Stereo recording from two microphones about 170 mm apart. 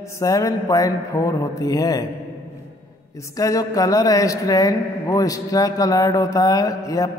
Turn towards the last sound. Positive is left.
turn(degrees=20)  # may be behind; listen again after turning